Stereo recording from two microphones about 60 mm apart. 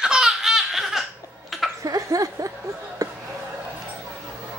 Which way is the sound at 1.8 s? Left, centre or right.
Right.